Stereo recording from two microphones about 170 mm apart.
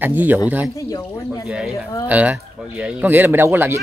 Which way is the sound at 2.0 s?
10° right (ahead or behind).